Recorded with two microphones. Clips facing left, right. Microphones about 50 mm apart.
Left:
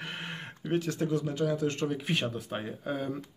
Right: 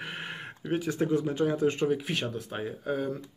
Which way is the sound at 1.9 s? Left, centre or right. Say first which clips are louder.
Right 2 dB; centre.